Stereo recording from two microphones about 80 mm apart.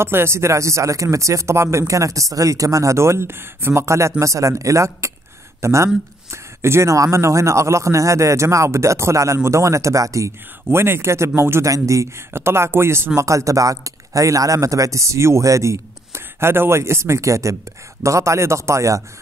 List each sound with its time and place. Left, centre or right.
0.0 s speech: right